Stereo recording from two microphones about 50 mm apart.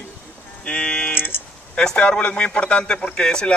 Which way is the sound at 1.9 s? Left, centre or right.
Left.